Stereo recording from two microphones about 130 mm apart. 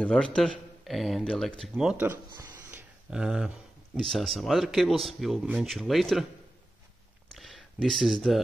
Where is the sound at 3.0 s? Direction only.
5° right (ahead or behind).